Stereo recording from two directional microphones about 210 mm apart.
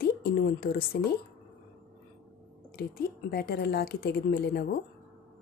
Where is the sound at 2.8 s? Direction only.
50° left (ahead or behind).